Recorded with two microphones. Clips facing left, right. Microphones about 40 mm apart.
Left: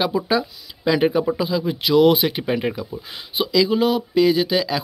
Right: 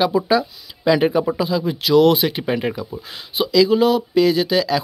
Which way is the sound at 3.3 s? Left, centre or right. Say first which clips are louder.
Right 3 dB; centre.